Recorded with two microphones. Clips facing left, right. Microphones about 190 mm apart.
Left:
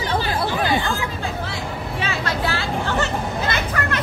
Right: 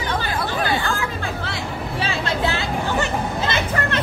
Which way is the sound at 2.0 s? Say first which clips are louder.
Right 2 dB; 20° right (ahead or behind).